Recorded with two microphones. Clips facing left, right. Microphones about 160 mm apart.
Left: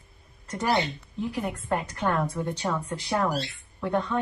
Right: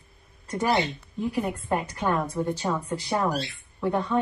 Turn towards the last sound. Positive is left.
turn(degrees=-10)  # may be behind; listen again after turning